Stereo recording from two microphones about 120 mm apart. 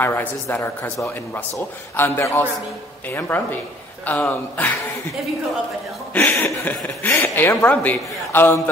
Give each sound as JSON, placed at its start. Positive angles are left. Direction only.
{"t": 0.0, "sound": "a man's voice", "side_deg": 15}
{"t": 6.1, "sound": "speech", "side_deg": 15}